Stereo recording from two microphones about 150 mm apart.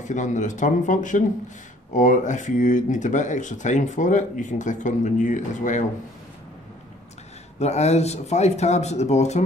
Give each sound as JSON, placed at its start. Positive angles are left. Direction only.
{"t": 0.0, "sound": "speech", "side_deg": 55}
{"t": 7.5, "sound": "speech", "side_deg": 45}